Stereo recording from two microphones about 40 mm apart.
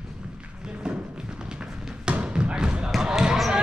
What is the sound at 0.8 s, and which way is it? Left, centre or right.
Music, right.